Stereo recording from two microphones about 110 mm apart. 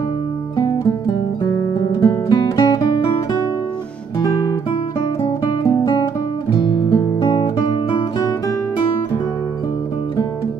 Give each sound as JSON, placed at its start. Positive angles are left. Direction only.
{"t": 0.6, "sound": "guitar", "side_deg": 45}
{"t": 2.5, "sound": "music", "side_deg": 30}
{"t": 5.4, "sound": "music", "side_deg": 30}